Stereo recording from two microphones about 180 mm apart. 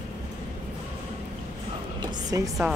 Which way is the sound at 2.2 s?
20° right (ahead or behind).